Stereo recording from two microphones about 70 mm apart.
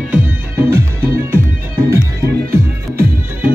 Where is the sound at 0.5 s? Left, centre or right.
Right.